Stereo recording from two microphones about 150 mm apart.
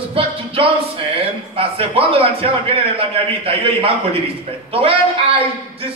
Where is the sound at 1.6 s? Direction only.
40° right (ahead or behind).